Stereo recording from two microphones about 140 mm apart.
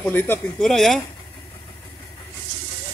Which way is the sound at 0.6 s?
5° left (ahead or behind).